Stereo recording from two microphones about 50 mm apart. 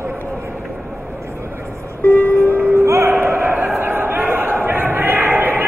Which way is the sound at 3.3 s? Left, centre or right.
Right.